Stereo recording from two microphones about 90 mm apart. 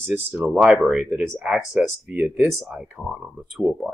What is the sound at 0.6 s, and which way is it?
Speech, 5° right (ahead or behind).